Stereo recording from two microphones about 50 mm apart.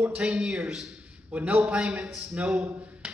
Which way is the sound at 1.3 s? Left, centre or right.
Right.